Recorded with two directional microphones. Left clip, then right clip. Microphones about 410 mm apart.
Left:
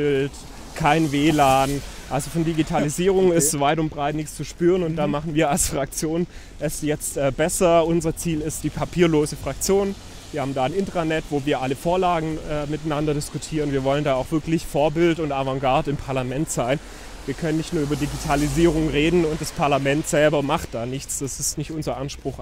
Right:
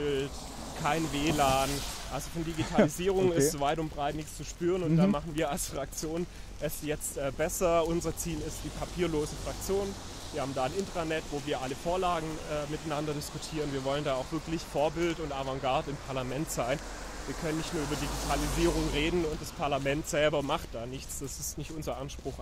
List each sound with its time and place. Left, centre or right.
0.0 s speech: left
3.2 s speech: left
18.3 s speech: left
19.6 s speech: left
19.9 s speech: left